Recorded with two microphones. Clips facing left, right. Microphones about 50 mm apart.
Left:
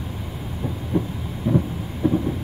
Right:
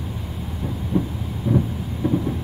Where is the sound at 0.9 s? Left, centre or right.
Centre.